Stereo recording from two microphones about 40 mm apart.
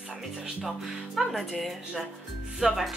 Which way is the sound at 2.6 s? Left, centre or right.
Centre.